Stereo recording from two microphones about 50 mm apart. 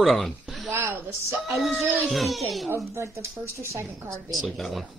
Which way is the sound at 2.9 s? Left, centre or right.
Right.